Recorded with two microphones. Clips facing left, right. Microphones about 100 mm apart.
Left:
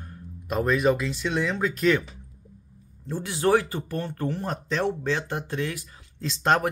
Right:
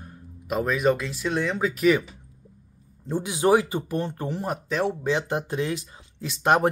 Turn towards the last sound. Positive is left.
turn(degrees=-10)  # may be behind; listen again after turning